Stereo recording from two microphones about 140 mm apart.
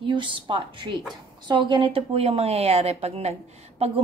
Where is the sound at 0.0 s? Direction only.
35° right (ahead or behind).